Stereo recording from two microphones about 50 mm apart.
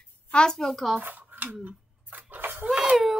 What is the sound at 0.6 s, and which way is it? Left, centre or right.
Speech, centre.